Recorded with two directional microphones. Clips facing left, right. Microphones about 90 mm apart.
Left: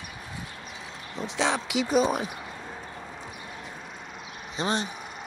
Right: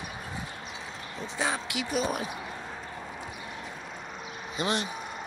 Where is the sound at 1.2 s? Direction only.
85° left.